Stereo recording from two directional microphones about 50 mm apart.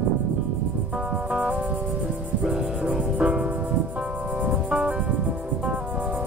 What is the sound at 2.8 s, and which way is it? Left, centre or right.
Music, right.